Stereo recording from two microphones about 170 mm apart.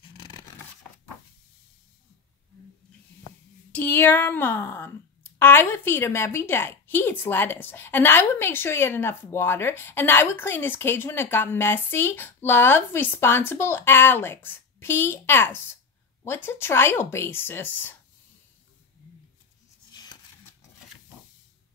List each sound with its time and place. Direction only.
0.2 s zipper: 25° left (ahead or behind)
3.7 s speech: 10° left (ahead or behind)
19.9 s a sound: 25° left (ahead or behind)